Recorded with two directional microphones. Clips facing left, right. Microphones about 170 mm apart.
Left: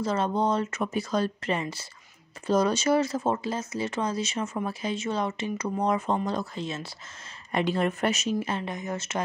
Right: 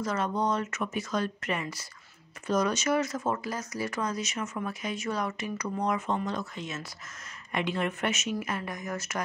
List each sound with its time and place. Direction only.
0.0 s speech: 30° left (ahead or behind)